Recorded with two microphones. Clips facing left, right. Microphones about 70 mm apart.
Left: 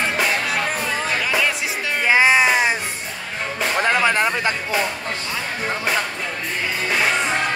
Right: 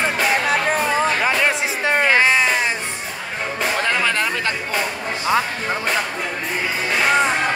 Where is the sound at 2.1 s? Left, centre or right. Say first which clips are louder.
Left 5 dB; centre.